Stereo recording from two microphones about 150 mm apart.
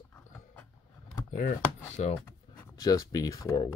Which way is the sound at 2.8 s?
25° left (ahead or behind).